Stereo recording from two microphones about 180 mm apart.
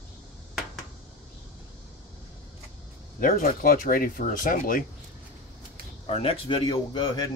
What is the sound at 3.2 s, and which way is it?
Speech, 55° left (ahead or behind).